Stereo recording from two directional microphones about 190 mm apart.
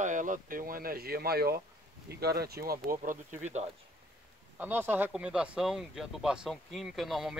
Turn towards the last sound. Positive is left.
turn(degrees=0)  # may be behind; listen again after turning